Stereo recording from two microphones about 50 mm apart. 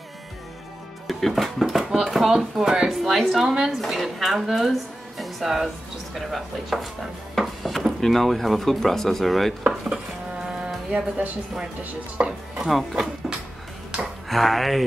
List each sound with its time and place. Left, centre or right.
1.0 s speech: centre
3.0 s a woman's voice: centre
10.4 s music: centre
10.9 s chopping: right
12.6 s speech: centre
14.3 s speech: centre